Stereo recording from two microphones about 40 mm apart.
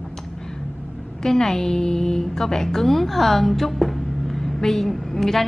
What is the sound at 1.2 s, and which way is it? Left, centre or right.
A woman's voice, centre.